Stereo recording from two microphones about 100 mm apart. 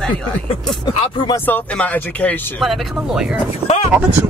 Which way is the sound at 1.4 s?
15° left (ahead or behind).